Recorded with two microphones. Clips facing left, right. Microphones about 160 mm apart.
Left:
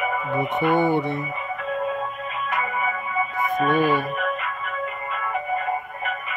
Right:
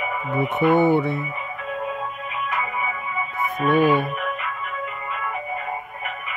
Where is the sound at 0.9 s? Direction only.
20° left (ahead or behind).